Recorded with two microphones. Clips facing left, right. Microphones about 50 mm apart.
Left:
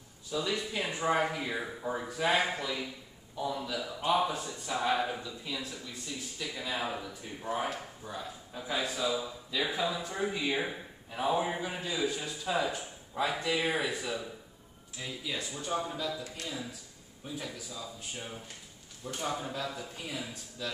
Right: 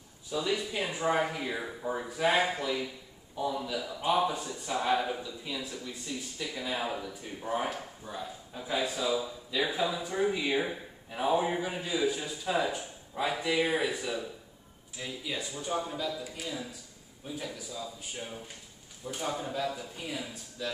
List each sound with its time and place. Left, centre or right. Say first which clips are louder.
0.3 s speech: right 2 dB; centre